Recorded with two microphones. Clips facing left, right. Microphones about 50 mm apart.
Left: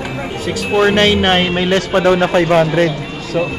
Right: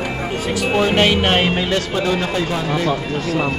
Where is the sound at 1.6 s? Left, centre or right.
Left.